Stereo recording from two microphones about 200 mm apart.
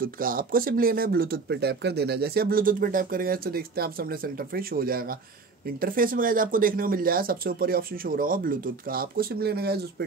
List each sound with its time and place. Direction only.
0.0 s speech: 45° right (ahead or behind)